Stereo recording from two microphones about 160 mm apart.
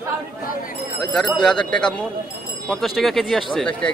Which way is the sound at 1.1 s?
5° left (ahead or behind).